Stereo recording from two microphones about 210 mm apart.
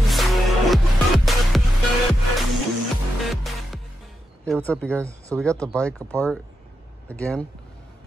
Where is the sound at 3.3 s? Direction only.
Centre (ahead or behind).